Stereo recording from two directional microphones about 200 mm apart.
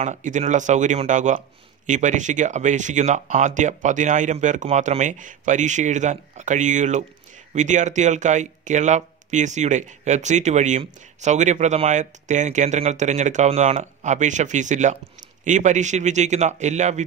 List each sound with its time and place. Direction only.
0.0 s speech: 40° right (ahead or behind)